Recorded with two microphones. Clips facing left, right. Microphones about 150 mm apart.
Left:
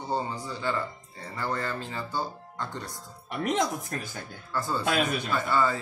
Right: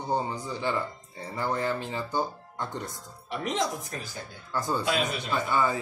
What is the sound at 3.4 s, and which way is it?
Speech, 50° left (ahead or behind).